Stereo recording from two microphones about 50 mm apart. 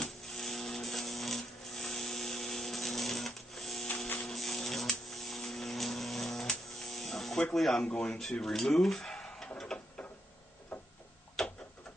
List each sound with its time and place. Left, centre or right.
0.0 s printer: centre
4.3 s electric toothbrush: centre
6.8 s electric shaver: centre
7.5 s speech: centre
7.8 s speech: centre
8.2 s speech: centre
11.4 s a sound: centre